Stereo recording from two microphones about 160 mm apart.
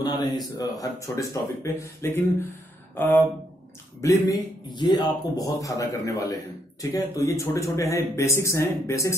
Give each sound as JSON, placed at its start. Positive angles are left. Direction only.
{"t": 0.0, "sound": "speech", "side_deg": 25}
{"t": 4.0, "sound": "speech", "side_deg": 25}